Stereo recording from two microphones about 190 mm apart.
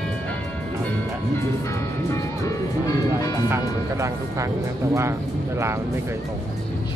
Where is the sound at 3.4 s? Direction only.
15° right (ahead or behind).